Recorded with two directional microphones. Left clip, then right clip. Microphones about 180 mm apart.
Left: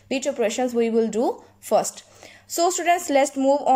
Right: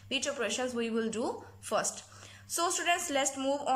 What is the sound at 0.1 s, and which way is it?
A woman's voice, 25° left (ahead or behind).